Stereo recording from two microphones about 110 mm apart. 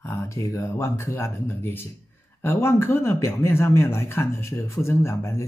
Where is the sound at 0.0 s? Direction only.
25° left (ahead or behind).